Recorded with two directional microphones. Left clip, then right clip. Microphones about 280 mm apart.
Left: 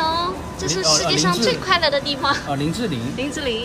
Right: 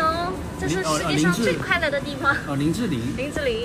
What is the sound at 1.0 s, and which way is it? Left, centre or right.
Speech, left.